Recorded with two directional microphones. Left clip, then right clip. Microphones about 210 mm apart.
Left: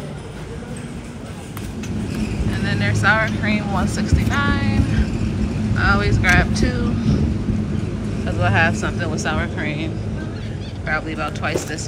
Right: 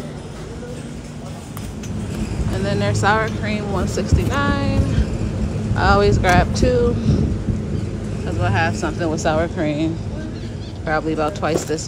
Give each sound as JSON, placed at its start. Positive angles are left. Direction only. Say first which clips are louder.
{"t": 2.6, "sound": "speech", "louder": "even", "side_deg": -20}
{"t": 8.4, "sound": "speech", "louder": "left 2 dB", "side_deg": -10}
{"t": 10.9, "sound": "speech", "louder": "right 3 dB", "side_deg": -20}